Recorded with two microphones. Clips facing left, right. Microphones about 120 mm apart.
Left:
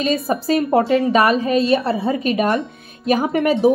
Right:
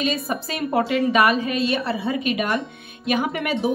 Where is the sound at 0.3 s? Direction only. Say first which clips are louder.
Left 7 dB; 35° left (ahead or behind).